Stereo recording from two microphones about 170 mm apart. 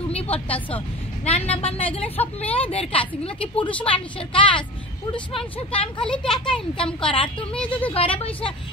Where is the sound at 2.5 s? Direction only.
35° left (ahead or behind).